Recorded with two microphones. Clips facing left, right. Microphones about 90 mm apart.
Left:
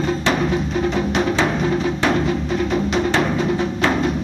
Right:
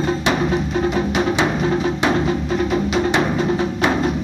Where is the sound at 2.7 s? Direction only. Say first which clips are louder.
Even; 5° right (ahead or behind).